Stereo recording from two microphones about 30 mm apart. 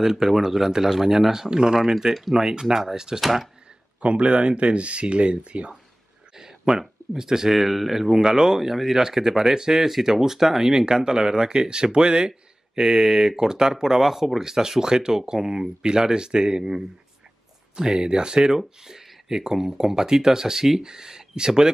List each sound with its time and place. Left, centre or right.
0.0 s speech: centre
1.8 s speech: centre
3.2 s speech: centre
4.0 s speech: right
6.3 s a sound: right
6.8 s speech: centre
8.2 s speech: right
12.3 s speech: right
14.1 s speech: centre
14.4 s speech: centre
17.7 s speech: right